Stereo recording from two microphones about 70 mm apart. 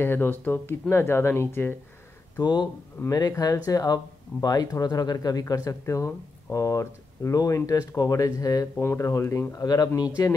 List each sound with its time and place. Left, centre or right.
0.0 s speech: left
2.3 s speech: left
3.1 s speech: left
8.7 s speech: left
9.9 s speech: left